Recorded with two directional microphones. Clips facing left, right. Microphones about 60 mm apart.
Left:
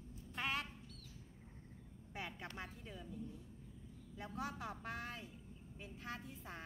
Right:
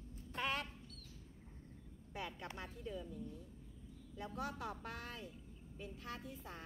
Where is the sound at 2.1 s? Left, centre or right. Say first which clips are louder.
Right 1 dB; left.